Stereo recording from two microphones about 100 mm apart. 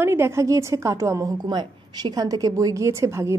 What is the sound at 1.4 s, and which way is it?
Speech, 45° right (ahead or behind).